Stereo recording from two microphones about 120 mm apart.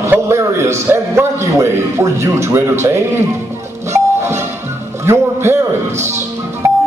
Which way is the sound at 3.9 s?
20° right (ahead or behind).